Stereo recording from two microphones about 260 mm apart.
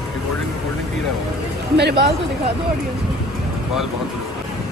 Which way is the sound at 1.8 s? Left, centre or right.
Right.